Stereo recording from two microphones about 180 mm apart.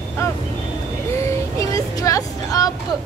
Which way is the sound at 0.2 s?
15° left (ahead or behind).